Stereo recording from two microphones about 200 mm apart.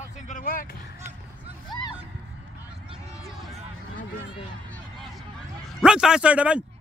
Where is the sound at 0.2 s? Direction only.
40° left (ahead or behind).